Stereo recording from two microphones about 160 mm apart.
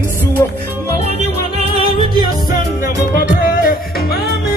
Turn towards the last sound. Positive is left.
turn(degrees=60)  # may be behind; listen again after turning